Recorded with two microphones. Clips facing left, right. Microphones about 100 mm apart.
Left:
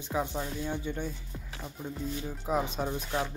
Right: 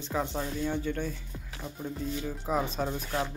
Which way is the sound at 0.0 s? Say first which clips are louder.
Right 1 dB; 10° left (ahead or behind).